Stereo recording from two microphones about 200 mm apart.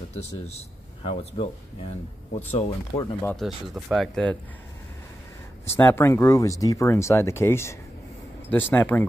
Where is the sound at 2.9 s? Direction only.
15° left (ahead or behind).